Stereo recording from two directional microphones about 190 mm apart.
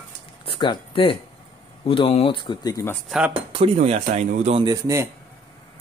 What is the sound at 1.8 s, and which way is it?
Speech, 30° left (ahead or behind).